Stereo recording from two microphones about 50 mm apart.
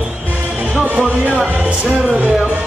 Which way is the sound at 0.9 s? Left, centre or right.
Right.